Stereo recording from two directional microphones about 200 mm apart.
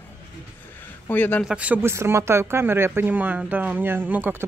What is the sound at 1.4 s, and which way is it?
Speech, 5° right (ahead or behind).